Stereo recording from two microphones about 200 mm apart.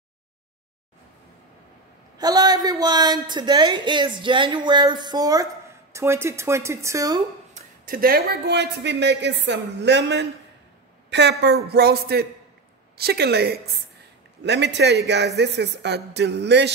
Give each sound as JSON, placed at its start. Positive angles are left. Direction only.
{"t": 2.1, "sound": "speech", "side_deg": -20}
{"t": 7.5, "sound": "speech", "side_deg": -45}